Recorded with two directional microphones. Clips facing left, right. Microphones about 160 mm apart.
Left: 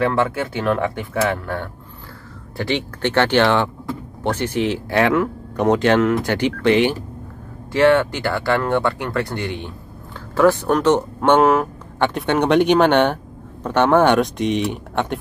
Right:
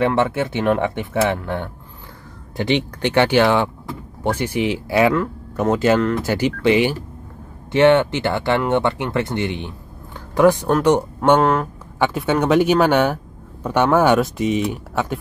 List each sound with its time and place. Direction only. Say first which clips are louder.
0.0 s speech: right 1 dB; 25° right (ahead or behind); by 6.3 s centre (ahead or behind)
6.6 s speech: left 1 dB; 10° right (ahead or behind)
7.7 s speech: right 1 dB; 20° right (ahead or behind)
11.1 s speech: left 1 dB; centre (ahead or behind)